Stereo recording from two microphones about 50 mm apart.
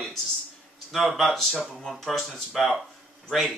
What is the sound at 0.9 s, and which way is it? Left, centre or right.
Speech, centre.